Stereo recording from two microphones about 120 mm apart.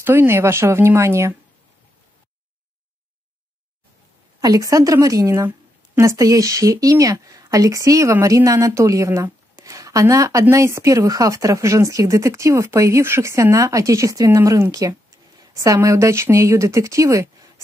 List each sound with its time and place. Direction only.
0.0 s speech: 20° right (ahead or behind)
4.4 s speech: 30° right (ahead or behind)